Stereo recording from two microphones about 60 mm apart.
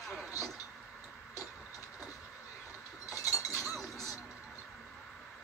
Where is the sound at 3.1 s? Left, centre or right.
Left.